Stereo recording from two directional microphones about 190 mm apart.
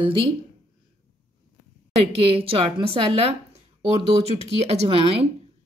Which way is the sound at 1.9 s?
30° right (ahead or behind).